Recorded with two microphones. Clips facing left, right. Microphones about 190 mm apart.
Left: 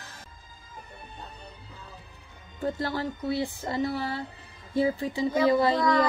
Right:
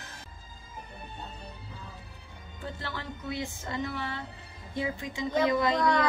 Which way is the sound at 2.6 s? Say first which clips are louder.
Left 9 dB; 40° left (ahead or behind).